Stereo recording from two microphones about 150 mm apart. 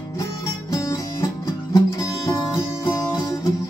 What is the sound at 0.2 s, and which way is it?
Music, 20° left (ahead or behind).